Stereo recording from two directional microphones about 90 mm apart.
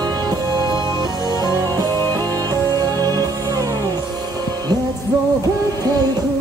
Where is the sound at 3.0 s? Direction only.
45° right (ahead or behind).